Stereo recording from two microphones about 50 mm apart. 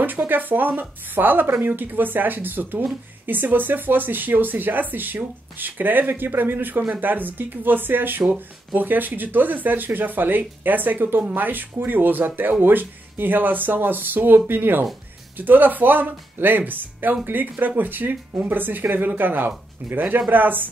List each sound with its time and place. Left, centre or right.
0.3 s speech: right